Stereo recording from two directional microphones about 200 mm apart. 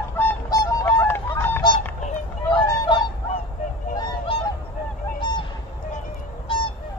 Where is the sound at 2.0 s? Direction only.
25° left (ahead or behind).